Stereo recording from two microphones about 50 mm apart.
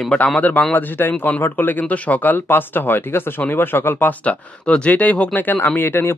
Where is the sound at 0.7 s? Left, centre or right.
Left.